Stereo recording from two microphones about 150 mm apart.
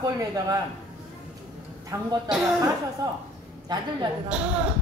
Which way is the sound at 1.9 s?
20° right (ahead or behind).